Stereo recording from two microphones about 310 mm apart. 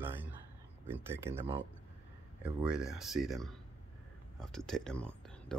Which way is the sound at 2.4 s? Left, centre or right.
Centre.